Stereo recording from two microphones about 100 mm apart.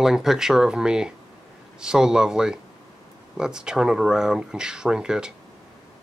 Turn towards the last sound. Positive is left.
turn(degrees=-5)  # may be behind; listen again after turning